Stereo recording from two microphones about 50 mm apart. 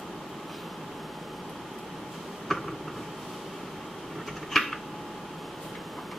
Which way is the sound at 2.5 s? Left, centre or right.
Centre.